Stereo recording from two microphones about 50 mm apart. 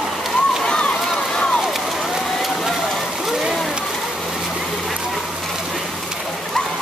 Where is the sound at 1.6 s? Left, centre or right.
Centre.